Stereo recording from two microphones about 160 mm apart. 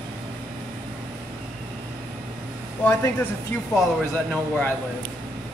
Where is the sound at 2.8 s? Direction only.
10° left (ahead or behind).